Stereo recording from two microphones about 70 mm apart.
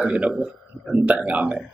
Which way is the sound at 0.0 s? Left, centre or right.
Centre.